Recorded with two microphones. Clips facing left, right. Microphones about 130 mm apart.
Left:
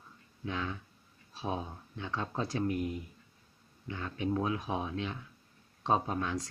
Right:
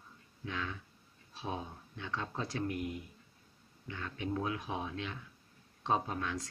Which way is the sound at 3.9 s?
20° left (ahead or behind).